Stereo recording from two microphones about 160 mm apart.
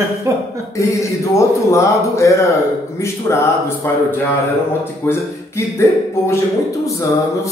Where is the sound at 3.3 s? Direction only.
20° left (ahead or behind).